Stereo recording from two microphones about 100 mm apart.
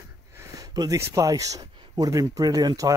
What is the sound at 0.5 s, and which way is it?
Speech, 40° right (ahead or behind).